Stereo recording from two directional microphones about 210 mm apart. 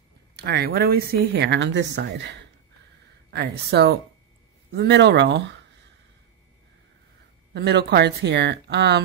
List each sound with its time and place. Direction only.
0.4 s a woman's voice: 50° right (ahead or behind)
7.5 s a woman's voice: 50° right (ahead or behind)